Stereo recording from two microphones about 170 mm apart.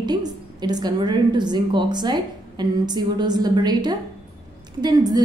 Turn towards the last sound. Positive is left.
turn(degrees=-20)  # may be behind; listen again after turning